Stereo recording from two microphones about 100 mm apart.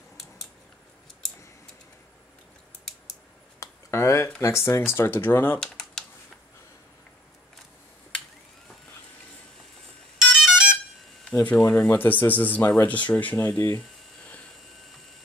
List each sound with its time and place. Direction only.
3.5 s a sound: 30° left (ahead or behind)
4.4 s speech: 25° left (ahead or behind)
5.6 s computer keyboard: 5° left (ahead or behind)
10.2 s ringtone: centre (ahead or behind)
11.6 s speech: 15° left (ahead or behind)